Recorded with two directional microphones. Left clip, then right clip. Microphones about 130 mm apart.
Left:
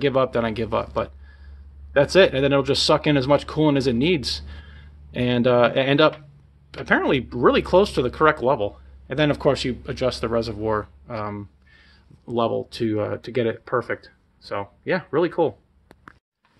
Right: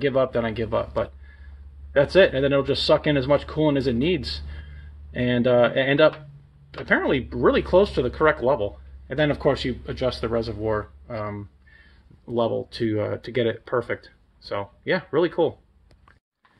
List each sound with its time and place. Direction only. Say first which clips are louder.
0.0 s speech: left 1 dB; 30° left (ahead or behind); by 15.5 s 15° left (ahead or behind)